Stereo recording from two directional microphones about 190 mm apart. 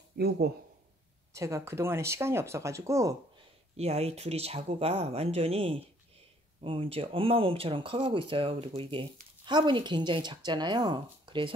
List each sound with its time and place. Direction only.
1.3 s speech: 15° right (ahead or behind)
3.7 s speech: 35° right (ahead or behind)